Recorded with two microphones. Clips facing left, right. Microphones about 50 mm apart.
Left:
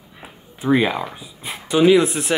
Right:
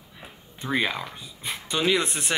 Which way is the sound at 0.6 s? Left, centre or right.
Centre.